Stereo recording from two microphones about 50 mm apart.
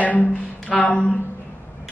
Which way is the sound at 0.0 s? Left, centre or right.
Left.